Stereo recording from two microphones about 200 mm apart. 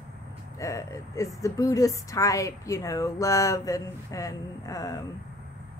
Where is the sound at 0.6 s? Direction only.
15° left (ahead or behind).